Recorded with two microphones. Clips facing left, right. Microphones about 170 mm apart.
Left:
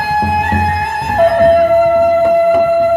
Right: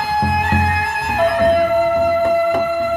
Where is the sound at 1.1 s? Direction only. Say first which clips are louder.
Left 6 dB; 45° left (ahead or behind).